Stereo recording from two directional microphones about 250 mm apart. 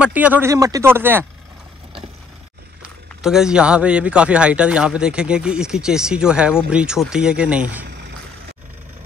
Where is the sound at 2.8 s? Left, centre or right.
Centre.